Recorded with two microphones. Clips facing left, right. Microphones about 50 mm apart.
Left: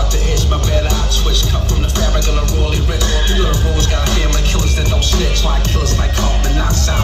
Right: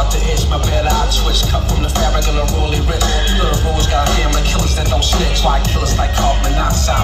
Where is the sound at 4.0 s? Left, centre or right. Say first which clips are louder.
Right 3 dB; centre.